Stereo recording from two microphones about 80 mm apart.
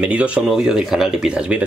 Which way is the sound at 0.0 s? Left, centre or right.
Centre.